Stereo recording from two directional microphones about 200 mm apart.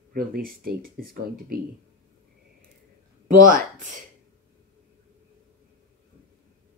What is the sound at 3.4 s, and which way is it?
Speech, 40° right (ahead or behind).